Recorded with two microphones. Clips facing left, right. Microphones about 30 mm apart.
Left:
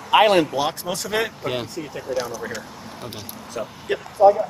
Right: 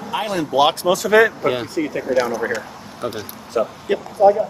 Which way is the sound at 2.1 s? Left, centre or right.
Right.